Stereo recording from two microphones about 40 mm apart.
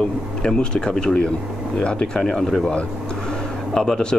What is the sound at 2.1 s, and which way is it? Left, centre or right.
Speech, centre.